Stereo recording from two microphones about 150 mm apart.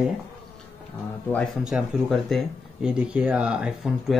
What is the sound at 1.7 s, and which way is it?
Speech, centre (ahead or behind).